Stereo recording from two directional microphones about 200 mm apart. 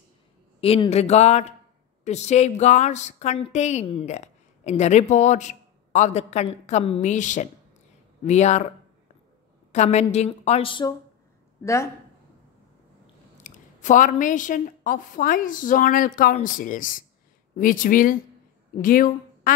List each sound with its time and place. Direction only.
0.6 s a woman's voice: 30° left (ahead or behind)
9.7 s a woman's voice: 35° left (ahead or behind); by 11.9 s 15° left (ahead or behind)
13.4 s a woman's voice: 40° left (ahead or behind)